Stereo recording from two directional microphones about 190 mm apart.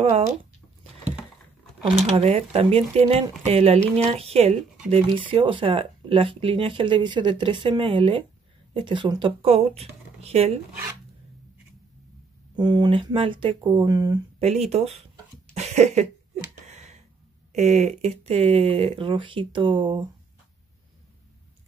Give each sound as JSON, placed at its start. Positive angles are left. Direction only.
{"t": 1.8, "sound": "speech", "side_deg": -30}
{"t": 12.5, "sound": "speech", "side_deg": -25}
{"t": 14.7, "sound": "speech", "side_deg": -35}
{"t": 15.5, "sound": "a sound", "side_deg": -35}
{"t": 17.5, "sound": "speech", "side_deg": -35}